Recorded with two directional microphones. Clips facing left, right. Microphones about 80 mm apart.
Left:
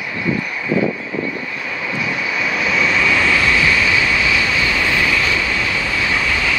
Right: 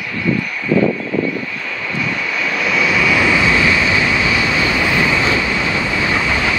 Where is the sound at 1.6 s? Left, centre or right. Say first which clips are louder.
Left 2 dB; centre.